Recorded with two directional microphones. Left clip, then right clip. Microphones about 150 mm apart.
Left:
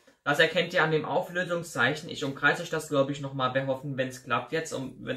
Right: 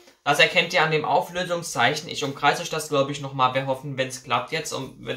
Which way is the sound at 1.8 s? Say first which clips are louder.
Right 6 dB; 30° right (ahead or behind).